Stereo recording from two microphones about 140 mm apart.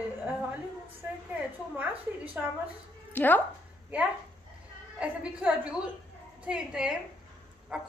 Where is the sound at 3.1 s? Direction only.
15° left (ahead or behind).